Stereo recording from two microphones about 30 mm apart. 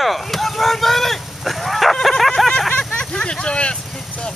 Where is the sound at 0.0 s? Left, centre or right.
Centre.